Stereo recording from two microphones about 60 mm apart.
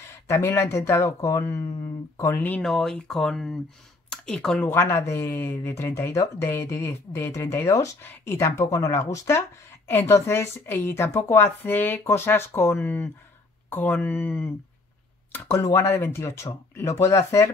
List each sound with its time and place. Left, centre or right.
0.3 s a woman's voice: left
2.6 s speech: centre
4.6 s a woman's voice: left
5.4 s a woman's voice: left
9.8 s a woman's voice: left
10.1 s a woman's voice: left
12.0 s speech: left
15.6 s a woman's voice: left